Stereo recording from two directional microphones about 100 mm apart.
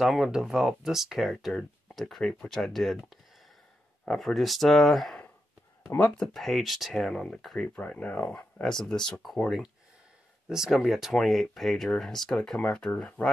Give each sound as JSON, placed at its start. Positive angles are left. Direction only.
{"t": 0.0, "sound": "speech", "side_deg": -5}
{"t": 5.9, "sound": "speech", "side_deg": 15}
{"t": 6.2, "sound": "speech", "side_deg": 0}
{"t": 10.5, "sound": "speech", "side_deg": -5}